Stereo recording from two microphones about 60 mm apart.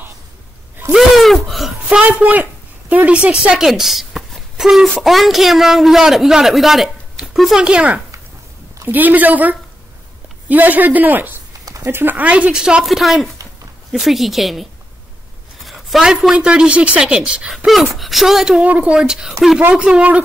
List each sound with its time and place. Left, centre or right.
0.9 s a sound: centre
1.9 s a man's voice: centre
7.6 s a man's voice: centre
8.8 s a man's voice: right
12.2 s a man's voice: right
12.8 s a man's voice: centre
15.6 s a sound: centre
16.3 s speech: centre
17.9 s a man's voice: centre
18.6 s a man's voice: right
18.9 s a man's voice: centre